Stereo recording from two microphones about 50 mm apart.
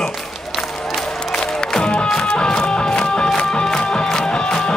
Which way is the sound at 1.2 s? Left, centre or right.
Centre.